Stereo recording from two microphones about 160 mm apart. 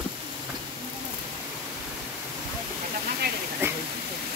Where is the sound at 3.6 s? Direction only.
15° right (ahead or behind).